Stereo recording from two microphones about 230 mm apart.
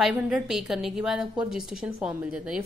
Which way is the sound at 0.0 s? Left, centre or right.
Centre.